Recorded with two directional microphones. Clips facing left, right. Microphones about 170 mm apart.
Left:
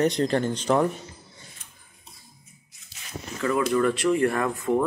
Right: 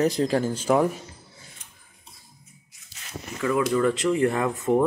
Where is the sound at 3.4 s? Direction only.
15° right (ahead or behind).